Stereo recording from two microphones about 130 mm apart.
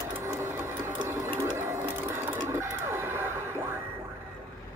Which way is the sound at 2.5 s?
20° right (ahead or behind).